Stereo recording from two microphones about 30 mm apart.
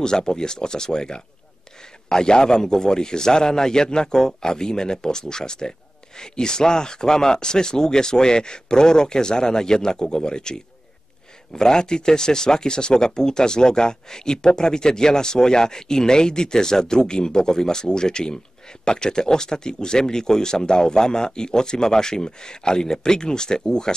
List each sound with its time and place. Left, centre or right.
0.0 s a man's voice: centre